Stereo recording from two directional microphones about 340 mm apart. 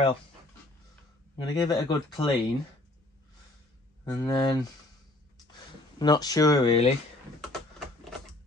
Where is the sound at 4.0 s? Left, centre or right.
Centre.